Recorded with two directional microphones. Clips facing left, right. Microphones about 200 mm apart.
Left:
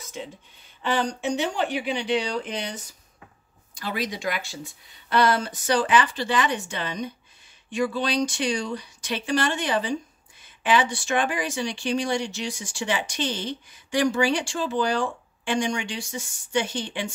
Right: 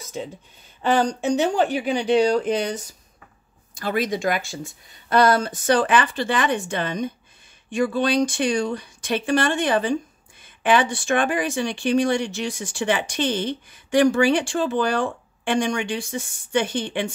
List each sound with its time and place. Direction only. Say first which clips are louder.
0.8 s speech: right 5 dB; 45° right (ahead or behind)
3.7 s speech: right 6 dB; 50° right (ahead or behind)